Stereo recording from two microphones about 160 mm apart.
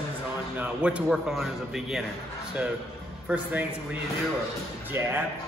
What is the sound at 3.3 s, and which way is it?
Speech, 10° right (ahead or behind).